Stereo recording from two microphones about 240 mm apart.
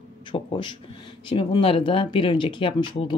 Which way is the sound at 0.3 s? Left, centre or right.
Centre.